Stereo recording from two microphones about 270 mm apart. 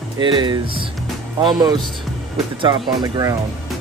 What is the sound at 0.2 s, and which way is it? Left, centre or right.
Speech, centre.